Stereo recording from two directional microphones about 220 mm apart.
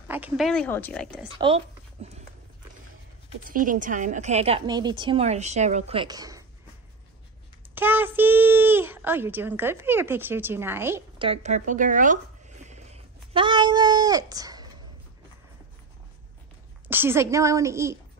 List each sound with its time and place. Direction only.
0.1 s speech: 5° right (ahead or behind)
1.4 s speech: 25° right (ahead or behind)
3.4 s a woman's voice: 40° right (ahead or behind); by 6.4 s 15° right (ahead or behind)
7.7 s a child's voice: 10° right (ahead or behind)
11.1 s a sound: 25° right (ahead or behind)
16.8 s a child's voice: 10° right (ahead or behind)